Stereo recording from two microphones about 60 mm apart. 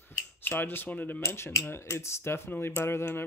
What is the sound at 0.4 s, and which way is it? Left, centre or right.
Speech, left.